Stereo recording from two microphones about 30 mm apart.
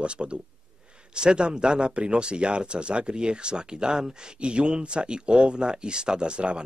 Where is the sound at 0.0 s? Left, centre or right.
Right.